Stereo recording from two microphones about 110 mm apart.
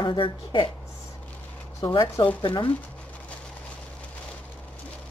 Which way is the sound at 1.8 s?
30° left (ahead or behind).